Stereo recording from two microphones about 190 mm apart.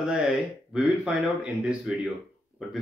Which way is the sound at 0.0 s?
5° right (ahead or behind).